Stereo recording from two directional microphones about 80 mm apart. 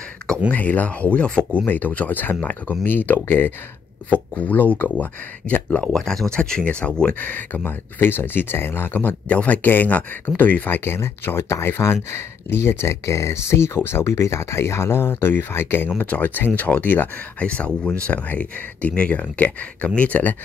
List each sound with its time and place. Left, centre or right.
0.5 s speech: centre
5.9 s speech: centre